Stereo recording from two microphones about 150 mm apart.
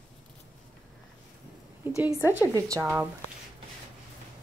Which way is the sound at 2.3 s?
20° right (ahead or behind).